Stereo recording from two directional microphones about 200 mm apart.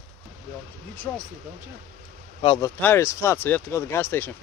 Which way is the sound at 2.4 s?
20° left (ahead or behind).